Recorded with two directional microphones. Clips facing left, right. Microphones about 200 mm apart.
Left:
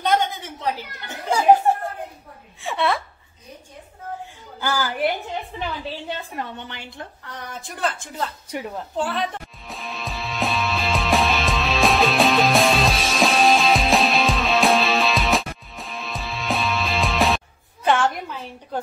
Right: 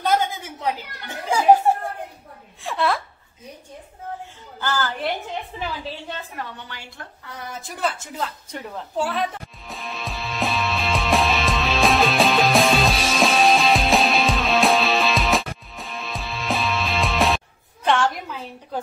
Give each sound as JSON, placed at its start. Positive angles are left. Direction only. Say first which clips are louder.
{"t": 0.0, "sound": "chatter", "louder": "even", "side_deg": -5}
{"t": 2.6, "sound": "a sound", "louder": "even", "side_deg": 0}
{"t": 4.6, "sound": "a woman's voice", "louder": "left 2 dB", "side_deg": 10}
{"t": 6.3, "sound": "a woman's voice", "louder": "left 3 dB", "side_deg": 20}
{"t": 7.2, "sound": "speech", "louder": "right 4 dB", "side_deg": -5}
{"t": 8.5, "sound": "a woman's voice", "louder": "left 3 dB", "side_deg": 10}
{"t": 8.9, "sound": "speech", "louder": "right 1 dB", "side_deg": -10}
{"t": 9.7, "sound": "music", "louder": "even", "side_deg": 0}
{"t": 17.8, "sound": "a sound", "louder": "left 1 dB", "side_deg": 0}